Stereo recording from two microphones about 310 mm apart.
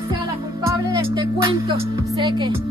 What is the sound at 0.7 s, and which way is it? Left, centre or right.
Speech, centre.